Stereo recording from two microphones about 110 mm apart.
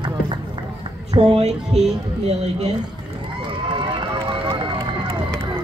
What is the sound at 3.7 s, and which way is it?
Run, 50° right (ahead or behind).